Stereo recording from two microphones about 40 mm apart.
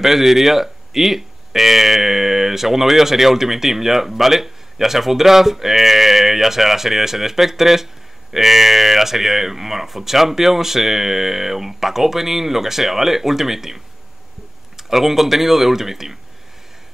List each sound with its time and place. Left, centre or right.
0.0 s speech: centre